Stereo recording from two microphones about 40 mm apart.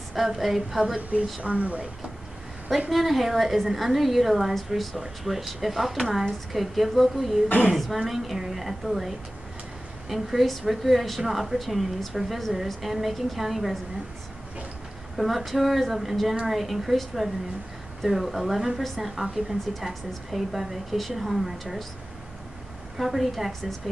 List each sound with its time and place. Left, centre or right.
0.1 s a woman's voice: centre
1.4 s speech: right
2.9 s speech: centre
15.1 s speech: centre
22.9 s speech: centre